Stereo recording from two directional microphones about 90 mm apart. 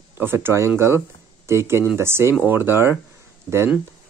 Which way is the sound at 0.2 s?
25° right (ahead or behind).